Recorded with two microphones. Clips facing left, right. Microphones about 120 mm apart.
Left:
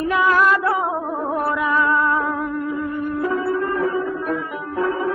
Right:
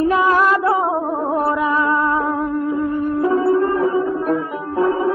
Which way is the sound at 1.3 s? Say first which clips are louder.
Right 2 dB; 25° right (ahead or behind).